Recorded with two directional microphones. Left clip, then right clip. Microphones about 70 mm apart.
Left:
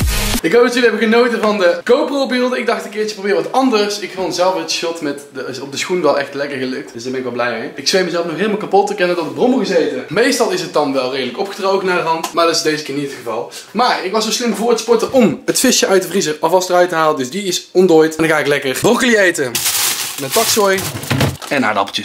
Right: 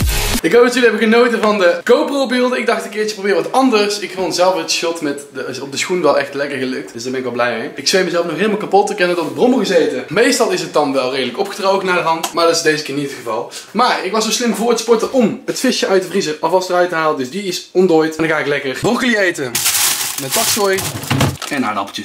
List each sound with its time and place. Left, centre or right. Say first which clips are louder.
0.4 s a man's voice: right 1 dB; centre
10.1 s a man's voice: even; centre
15.1 s speech: left 3 dB; left
18.3 s speech: left 2 dB; left
21.5 s speech: left 4 dB; left